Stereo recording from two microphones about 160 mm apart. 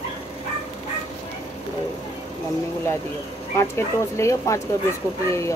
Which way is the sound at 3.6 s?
15° left (ahead or behind).